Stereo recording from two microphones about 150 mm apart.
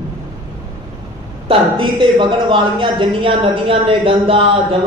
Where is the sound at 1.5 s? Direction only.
35° right (ahead or behind).